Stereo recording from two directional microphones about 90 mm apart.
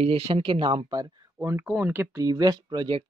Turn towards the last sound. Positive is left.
turn(degrees=-65)  # may be behind; listen again after turning